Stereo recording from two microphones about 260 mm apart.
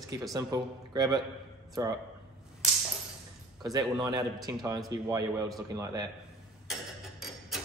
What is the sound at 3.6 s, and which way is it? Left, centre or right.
Speech, centre.